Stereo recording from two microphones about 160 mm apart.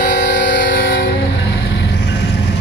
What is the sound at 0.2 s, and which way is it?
Music, 90° left.